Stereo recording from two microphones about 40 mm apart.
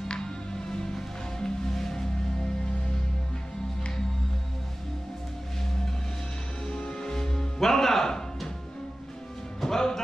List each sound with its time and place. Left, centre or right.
0.1 s music: centre
6.7 s music: centre
9.6 s music: centre